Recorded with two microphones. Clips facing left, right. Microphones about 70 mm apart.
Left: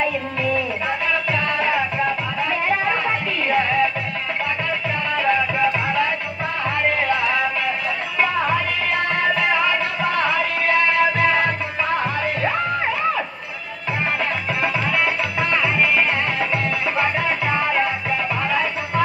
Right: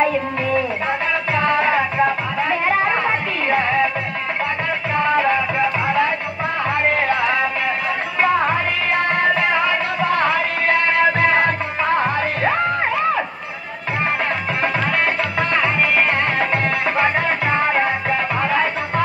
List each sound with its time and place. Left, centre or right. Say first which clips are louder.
0.6 s music: right 3 dB; right
4.9 s music: right 4 dB; right
9.1 s music: right 1 dB; right
14.6 s music: right 1 dB; right